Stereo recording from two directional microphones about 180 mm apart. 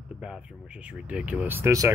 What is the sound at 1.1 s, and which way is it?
Speech, 5° right (ahead or behind).